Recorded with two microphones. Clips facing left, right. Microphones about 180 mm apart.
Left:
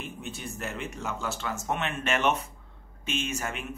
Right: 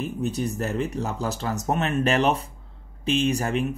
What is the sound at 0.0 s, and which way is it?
Speech, 40° right (ahead or behind).